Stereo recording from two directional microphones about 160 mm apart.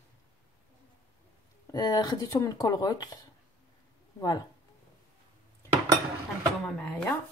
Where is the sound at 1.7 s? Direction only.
25° left (ahead or behind).